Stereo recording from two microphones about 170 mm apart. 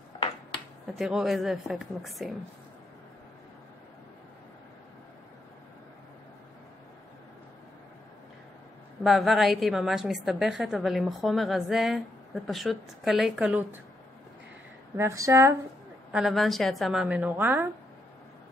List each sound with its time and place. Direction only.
0.9 s a woman's voice: centre (ahead or behind)
9.0 s a woman's voice: centre (ahead or behind)
15.0 s speech: 15° right (ahead or behind)
16.1 s a woman's voice: 5° right (ahead or behind)